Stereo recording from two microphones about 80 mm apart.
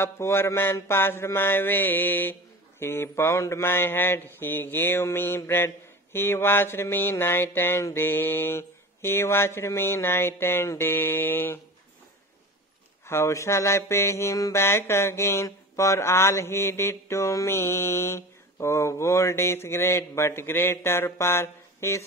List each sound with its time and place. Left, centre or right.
0.0 s mantra: left
13.0 s mantra: left